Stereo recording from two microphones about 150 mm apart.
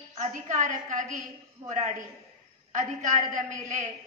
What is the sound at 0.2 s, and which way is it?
A woman's voice, 55° right (ahead or behind).